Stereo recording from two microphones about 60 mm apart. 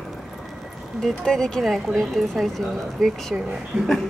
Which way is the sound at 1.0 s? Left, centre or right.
Centre.